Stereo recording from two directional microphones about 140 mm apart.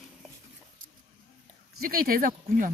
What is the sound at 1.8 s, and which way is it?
Speech, 90° right.